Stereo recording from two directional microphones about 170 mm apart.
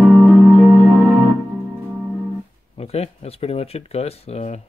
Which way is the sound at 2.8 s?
35° left (ahead or behind).